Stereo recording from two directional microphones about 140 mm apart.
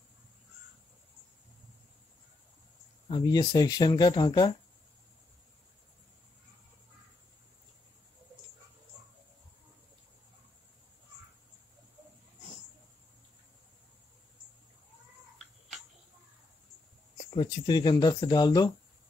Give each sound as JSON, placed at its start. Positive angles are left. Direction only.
{"t": 3.1, "sound": "speech", "side_deg": 30}
{"t": 17.3, "sound": "speech", "side_deg": 35}